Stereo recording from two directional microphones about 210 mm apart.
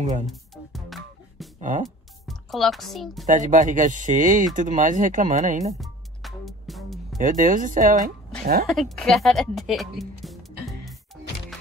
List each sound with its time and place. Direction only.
0.0 s speech: 35° right (ahead or behind)
0.3 s music: centre (ahead or behind)
2.2 s speech: centre (ahead or behind)
3.3 s speech: 35° right (ahead or behind)
5.8 s music: centre (ahead or behind)
7.2 s speech: 40° right (ahead or behind)
8.6 s speech: centre (ahead or behind)